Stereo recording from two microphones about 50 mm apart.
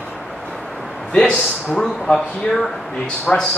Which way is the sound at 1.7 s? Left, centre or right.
Centre.